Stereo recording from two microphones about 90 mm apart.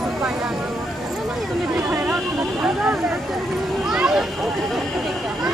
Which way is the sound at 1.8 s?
20° right (ahead or behind).